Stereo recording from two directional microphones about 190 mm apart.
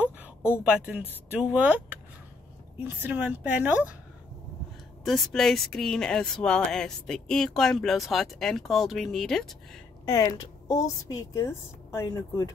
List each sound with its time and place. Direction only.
0.5 s a woman's voice: 5° right (ahead or behind)
5.0 s speech: centre (ahead or behind)
10.0 s a woman's voice: 15° left (ahead or behind)